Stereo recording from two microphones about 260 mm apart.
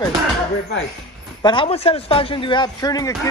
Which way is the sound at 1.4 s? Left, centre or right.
Centre.